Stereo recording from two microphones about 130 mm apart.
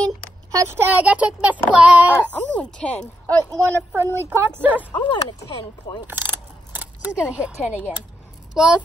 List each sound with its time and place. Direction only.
0.6 s a child's voice: 15° right (ahead or behind)
2.3 s speech: 10° left (ahead or behind)
3.5 s a child's voice: 20° right (ahead or behind)
4.9 s speech: 35° left (ahead or behind)
6.0 s a sound: 15° right (ahead or behind)
8.5 s speech: 5° right (ahead or behind)